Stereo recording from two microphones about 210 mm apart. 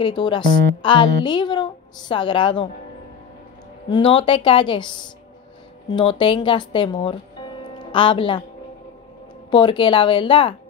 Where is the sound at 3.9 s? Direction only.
25° left (ahead or behind).